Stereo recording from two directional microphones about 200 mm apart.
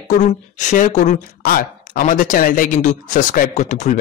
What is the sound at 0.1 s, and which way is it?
Speech, 40° left (ahead or behind).